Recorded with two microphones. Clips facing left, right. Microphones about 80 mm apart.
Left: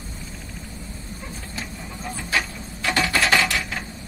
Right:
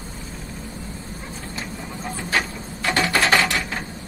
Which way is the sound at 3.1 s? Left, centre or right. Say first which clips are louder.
Right 2 dB; right.